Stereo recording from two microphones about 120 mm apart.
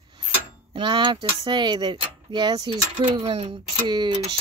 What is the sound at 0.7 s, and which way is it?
Speech, 45° right (ahead or behind).